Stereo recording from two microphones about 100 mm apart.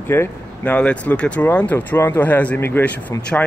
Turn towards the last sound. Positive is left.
turn(degrees=15)  # may be behind; listen again after turning